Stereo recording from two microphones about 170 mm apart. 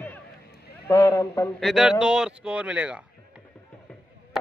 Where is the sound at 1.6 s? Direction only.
Centre (ahead or behind).